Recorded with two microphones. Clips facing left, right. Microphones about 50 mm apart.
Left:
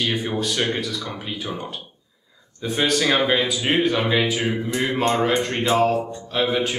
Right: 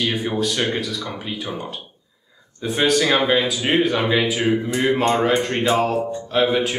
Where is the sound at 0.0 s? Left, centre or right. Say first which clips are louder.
Right 2 dB; centre.